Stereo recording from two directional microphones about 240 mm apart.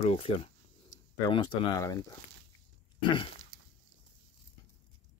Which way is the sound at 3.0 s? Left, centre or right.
Left.